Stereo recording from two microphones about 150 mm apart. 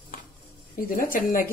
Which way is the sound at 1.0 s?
65° left (ahead or behind).